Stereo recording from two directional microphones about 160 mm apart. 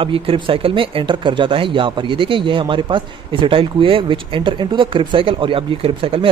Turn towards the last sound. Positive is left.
turn(degrees=-35)  # may be behind; listen again after turning